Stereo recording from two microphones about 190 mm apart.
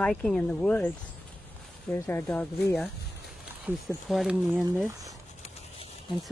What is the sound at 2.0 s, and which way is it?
Speech, 5° left (ahead or behind).